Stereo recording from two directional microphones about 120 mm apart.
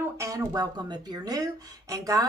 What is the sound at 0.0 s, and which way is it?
Speech, 20° right (ahead or behind).